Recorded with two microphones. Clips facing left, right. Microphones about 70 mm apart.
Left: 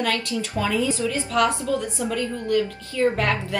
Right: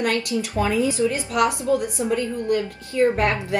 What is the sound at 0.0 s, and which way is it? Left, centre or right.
A woman's voice, right.